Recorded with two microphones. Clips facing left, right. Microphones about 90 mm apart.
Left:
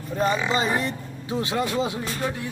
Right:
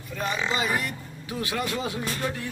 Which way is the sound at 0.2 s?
30° left (ahead or behind).